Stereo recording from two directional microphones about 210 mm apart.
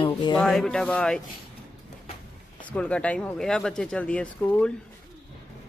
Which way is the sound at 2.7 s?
5° left (ahead or behind).